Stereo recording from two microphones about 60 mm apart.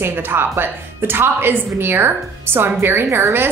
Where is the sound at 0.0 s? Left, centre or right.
Right.